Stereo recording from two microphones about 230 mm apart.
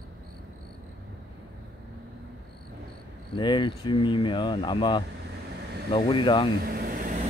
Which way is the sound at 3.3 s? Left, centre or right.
Left.